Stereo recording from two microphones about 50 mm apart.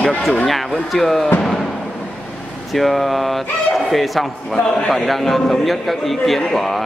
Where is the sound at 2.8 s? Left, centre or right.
Centre.